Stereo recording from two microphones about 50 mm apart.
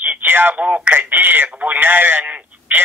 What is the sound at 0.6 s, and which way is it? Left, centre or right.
Speech, right.